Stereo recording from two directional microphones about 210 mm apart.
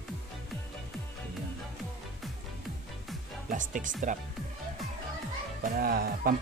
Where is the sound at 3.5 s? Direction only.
40° right (ahead or behind).